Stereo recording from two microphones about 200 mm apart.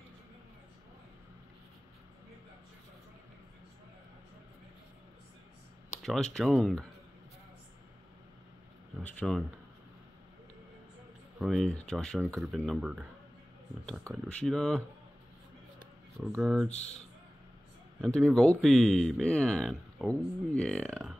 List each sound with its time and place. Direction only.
6.0 s speech: 5° left (ahead or behind)
9.0 s a sound: centre (ahead or behind)
11.3 s speech: centre (ahead or behind)
16.3 s speech: centre (ahead or behind)
16.7 s speech: 35° left (ahead or behind)
18.0 s speech: 5° left (ahead or behind)